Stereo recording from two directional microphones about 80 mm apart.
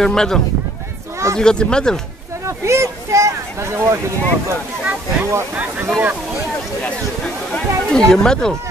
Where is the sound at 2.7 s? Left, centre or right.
Right.